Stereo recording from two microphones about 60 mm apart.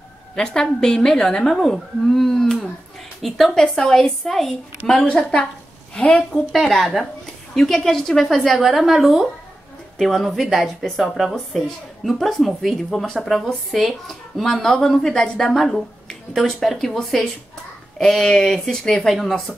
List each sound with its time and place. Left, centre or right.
0.4 s a woman's voice: centre
4.8 s a woman's voice: centre
6.5 s a woman's voice: centre